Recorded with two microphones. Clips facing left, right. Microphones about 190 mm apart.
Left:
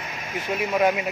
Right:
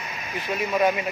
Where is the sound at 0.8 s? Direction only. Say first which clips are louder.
Left 1 dB; 10° left (ahead or behind).